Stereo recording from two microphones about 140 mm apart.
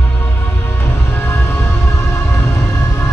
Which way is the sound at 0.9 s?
20° left (ahead or behind).